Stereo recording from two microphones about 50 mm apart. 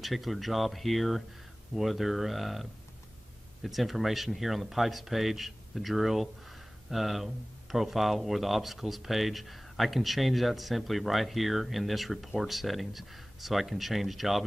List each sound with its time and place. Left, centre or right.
0.0 s speech: centre